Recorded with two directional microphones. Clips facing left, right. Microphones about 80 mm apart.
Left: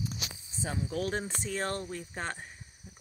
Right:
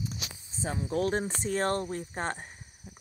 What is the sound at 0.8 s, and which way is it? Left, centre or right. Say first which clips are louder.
Speech: right 6 dB; right.